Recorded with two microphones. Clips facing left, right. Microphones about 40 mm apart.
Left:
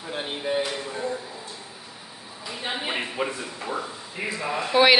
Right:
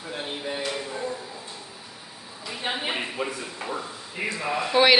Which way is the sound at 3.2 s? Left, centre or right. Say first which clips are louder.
Left 4 dB; left.